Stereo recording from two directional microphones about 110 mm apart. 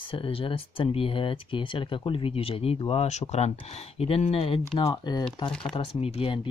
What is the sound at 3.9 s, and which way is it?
Speech, 65° left (ahead or behind).